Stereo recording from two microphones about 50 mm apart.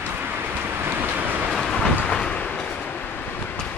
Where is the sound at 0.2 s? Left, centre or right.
Right.